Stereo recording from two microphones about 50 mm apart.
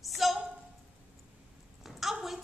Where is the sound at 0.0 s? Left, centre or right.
Centre.